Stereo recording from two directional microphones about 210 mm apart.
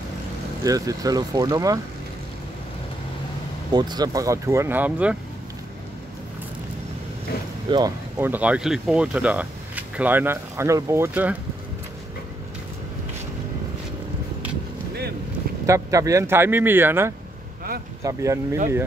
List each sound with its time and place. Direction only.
0.7 s speech: 15° right (ahead or behind)
3.7 s speech: 20° right (ahead or behind)
7.7 s speech: 15° right (ahead or behind)
15.6 s speech: 15° right (ahead or behind)